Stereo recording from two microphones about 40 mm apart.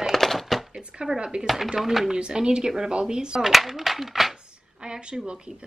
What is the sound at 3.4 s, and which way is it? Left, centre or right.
Speech, centre.